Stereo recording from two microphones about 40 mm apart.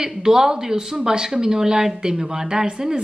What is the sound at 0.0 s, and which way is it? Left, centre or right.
A woman's voice, centre.